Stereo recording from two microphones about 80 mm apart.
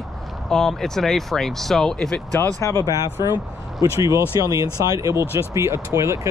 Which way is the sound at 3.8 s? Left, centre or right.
Right.